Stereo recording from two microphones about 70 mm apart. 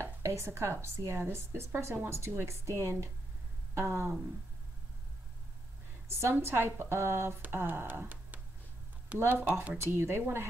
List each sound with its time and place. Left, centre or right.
0.0 s a woman's voice: right
6.3 s a woman's voice: right
9.8 s a woman's voice: right